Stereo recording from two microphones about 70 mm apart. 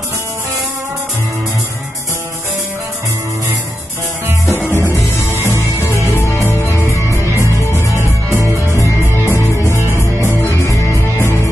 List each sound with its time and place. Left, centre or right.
5.3 s music: left
9.8 s music: right
10.5 s music: left